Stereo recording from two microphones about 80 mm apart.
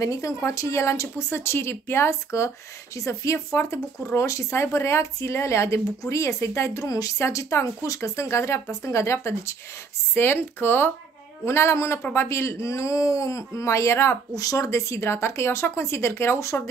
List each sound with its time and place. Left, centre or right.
0.0 s speech: left